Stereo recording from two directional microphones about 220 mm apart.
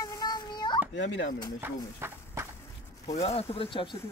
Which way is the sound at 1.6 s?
10° right (ahead or behind).